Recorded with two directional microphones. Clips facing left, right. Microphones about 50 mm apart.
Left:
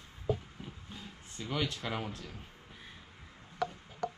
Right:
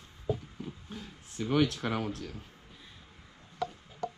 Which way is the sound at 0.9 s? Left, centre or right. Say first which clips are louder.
Right 3 dB; right.